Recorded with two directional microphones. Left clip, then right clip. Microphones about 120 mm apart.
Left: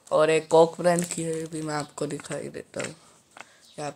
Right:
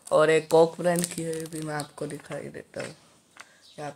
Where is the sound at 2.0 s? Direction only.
45° left (ahead or behind).